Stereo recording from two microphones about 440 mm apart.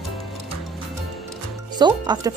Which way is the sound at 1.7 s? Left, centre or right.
Centre.